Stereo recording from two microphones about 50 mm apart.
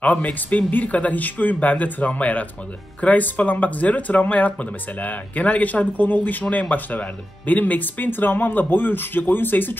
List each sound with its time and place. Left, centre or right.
0.0 s speech: left